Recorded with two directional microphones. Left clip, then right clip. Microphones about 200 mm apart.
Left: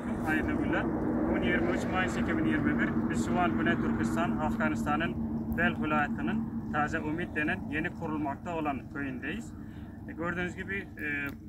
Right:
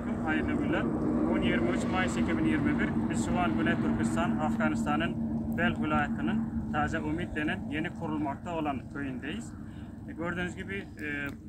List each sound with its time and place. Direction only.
0.3 s speech: centre (ahead or behind)
0.8 s speech: 60° right (ahead or behind)
1.3 s speech: 5° right (ahead or behind)